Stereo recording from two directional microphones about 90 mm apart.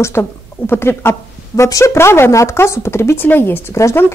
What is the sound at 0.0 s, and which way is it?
Speech, 30° left (ahead or behind).